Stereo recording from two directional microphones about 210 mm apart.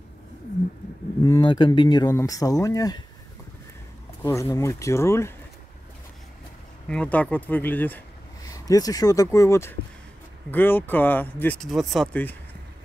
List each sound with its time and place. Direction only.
1.2 s speech: 20° left (ahead or behind)
4.2 s speech: 15° left (ahead or behind)
6.9 s speech: 5° left (ahead or behind)